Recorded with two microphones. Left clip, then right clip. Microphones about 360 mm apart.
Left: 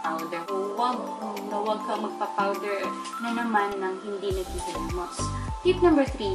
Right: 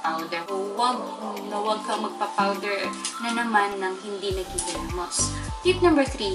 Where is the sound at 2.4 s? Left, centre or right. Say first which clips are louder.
Right 2 dB; centre.